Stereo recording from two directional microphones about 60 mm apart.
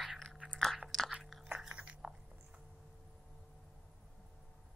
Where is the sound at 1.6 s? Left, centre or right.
Centre.